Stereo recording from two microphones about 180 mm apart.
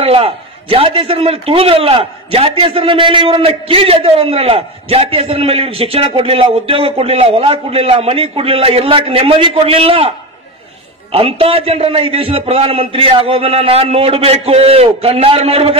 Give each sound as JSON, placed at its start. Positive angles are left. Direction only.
{"t": 0.0, "sound": "a man's voice", "side_deg": -30}